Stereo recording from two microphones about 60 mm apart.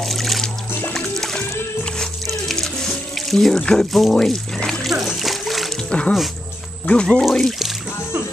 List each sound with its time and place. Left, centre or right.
0.0 s music: centre
2.5 s music: centre
3.3 s a sound: centre
5.9 s music: centre
6.9 s speech: centre
7.2 s speech: centre